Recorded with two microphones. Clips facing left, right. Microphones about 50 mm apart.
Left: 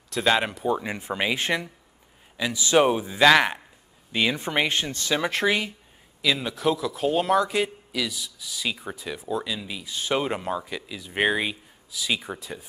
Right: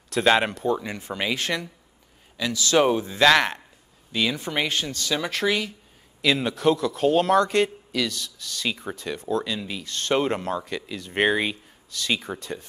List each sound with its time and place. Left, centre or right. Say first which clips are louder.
0.1 s speech: right 3 dB; centre
0.5 s a man's voice: right 1 dB; centre
4.1 s speech: left 1 dB; left
6.2 s speech: right 3 dB; centre